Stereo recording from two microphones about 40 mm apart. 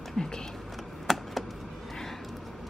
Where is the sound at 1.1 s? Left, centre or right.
Centre.